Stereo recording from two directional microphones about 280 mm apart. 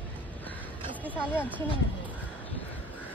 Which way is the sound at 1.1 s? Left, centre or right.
Centre.